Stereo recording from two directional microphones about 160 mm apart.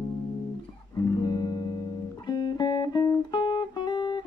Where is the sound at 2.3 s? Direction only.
25° left (ahead or behind).